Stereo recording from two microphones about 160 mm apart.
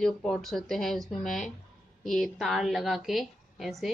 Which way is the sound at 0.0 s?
Centre (ahead or behind).